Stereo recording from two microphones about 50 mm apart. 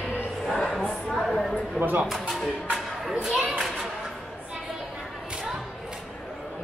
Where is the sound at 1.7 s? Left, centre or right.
Right.